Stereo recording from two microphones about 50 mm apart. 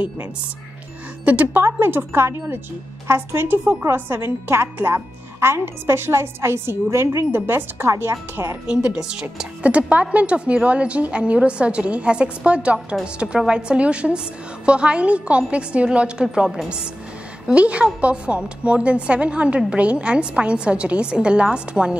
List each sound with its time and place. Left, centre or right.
1.2 s speech: right
1.6 s a woman's voice: right
7.2 s a woman's voice: right
8.6 s speech: centre
17.6 s speech: right